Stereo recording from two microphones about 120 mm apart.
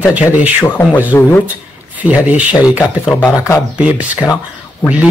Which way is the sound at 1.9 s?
10° right (ahead or behind).